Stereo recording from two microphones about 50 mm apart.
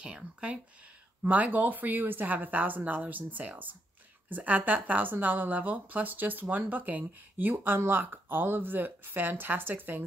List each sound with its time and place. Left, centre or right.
0.0 s speech: right
1.2 s speech: right